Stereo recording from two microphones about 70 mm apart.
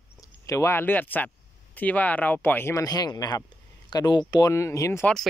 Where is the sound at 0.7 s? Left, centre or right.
Left.